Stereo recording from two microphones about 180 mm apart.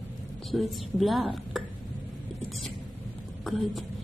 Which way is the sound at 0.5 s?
Centre (ahead or behind).